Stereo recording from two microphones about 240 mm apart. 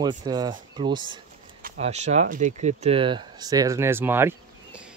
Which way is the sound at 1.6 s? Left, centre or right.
Right.